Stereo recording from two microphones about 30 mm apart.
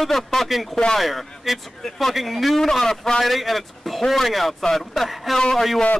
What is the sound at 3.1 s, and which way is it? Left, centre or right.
A man's voice, centre.